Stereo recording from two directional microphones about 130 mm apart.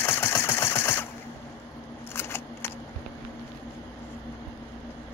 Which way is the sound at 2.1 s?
20° left (ahead or behind).